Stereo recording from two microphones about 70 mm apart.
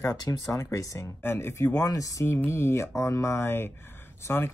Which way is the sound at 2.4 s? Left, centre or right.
Left.